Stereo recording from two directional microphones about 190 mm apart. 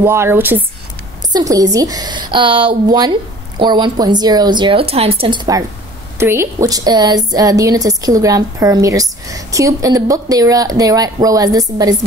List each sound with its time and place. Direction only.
0.0 s speech: 15° right (ahead or behind)
6.1 s speech: 15° right (ahead or behind)